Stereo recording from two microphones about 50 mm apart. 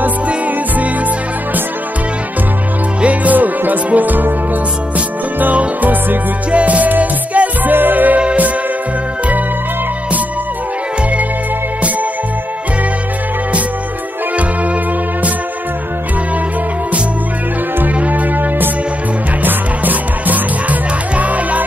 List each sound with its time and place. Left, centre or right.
3.0 s music: right
5.4 s music: right
8.2 s music: right
17.9 s music: right